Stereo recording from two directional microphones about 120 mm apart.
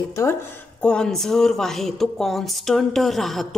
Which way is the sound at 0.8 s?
5° left (ahead or behind).